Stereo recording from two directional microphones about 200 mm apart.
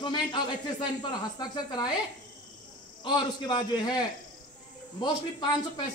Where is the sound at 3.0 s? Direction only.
20° left (ahead or behind).